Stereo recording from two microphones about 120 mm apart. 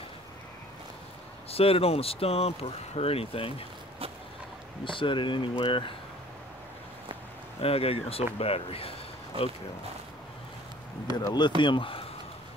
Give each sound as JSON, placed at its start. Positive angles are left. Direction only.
{"t": 1.5, "sound": "speech", "side_deg": 55}
{"t": 4.8, "sound": "speech", "side_deg": 45}
{"t": 7.6, "sound": "speech", "side_deg": 55}
{"t": 11.1, "sound": "speech", "side_deg": 35}